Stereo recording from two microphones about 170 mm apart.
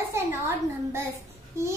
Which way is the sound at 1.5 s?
15° right (ahead or behind).